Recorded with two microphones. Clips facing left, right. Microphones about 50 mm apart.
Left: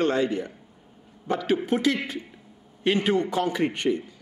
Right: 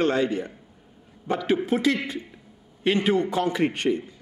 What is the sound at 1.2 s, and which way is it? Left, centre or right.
A man's voice, centre.